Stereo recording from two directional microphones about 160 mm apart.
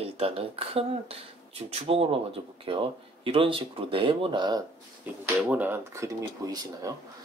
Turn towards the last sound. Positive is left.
turn(degrees=-20)  # may be behind; listen again after turning